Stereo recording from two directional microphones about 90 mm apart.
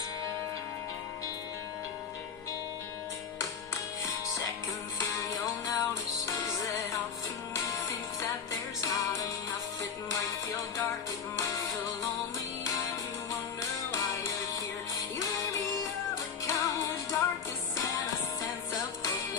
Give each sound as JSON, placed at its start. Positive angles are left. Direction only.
{"t": 3.3, "sound": "music", "side_deg": 35}
{"t": 8.8, "sound": "music", "side_deg": 40}
{"t": 13.3, "sound": "music", "side_deg": 35}